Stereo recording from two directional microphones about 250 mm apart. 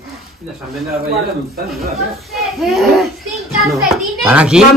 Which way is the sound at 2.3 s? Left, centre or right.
Centre.